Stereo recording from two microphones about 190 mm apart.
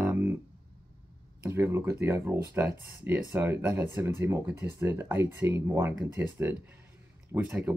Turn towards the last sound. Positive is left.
turn(degrees=-5)  # may be behind; listen again after turning